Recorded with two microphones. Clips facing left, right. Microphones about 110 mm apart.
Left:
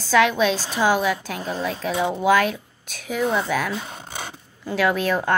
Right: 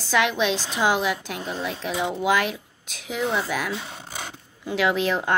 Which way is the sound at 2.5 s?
45° left (ahead or behind).